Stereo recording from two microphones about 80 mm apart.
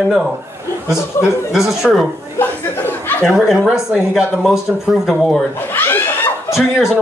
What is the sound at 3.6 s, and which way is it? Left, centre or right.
Speech, centre.